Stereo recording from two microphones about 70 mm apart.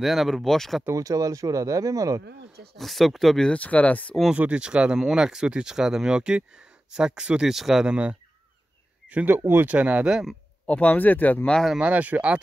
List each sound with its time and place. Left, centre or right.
0.0 s speech: centre
0.9 s speech: right
2.8 s speech: centre
3.5 s speech: left
4.3 s speech: centre
7.9 s speech: centre
9.4 s speech: right
9.7 s speech: centre
10.7 s speech: left
11.9 s speech: right